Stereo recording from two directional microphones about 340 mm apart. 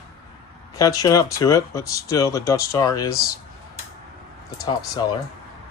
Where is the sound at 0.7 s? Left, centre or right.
Centre.